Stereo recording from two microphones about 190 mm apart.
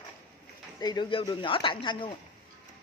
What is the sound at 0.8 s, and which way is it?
Speech, 20° left (ahead or behind).